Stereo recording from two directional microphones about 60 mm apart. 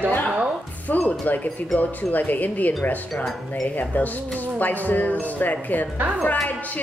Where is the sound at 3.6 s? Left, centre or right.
Left.